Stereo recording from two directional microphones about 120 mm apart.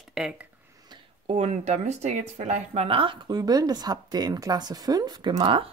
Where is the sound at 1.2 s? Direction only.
65° right (ahead or behind).